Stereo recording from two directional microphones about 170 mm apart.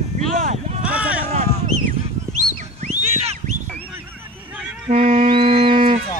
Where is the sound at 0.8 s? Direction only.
10° right (ahead or behind).